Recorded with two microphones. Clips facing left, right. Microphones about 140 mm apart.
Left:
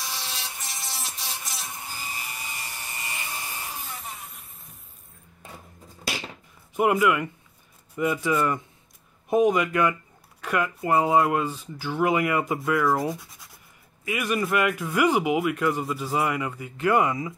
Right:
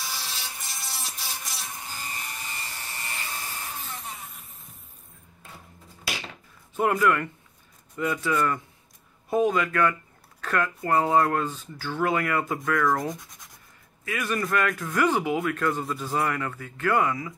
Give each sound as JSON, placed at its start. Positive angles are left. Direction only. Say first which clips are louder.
{"t": 0.0, "sound": "a sound", "louder": "left 1 dB", "side_deg": 0}
{"t": 2.1, "sound": "helicopter", "louder": "even", "side_deg": 10}
{"t": 6.8, "sound": "speech", "louder": "left 2 dB", "side_deg": 10}
{"t": 8.0, "sound": "speech", "louder": "left 2 dB", "side_deg": 25}